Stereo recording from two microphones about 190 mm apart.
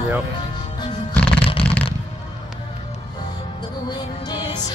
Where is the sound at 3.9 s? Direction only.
20° left (ahead or behind).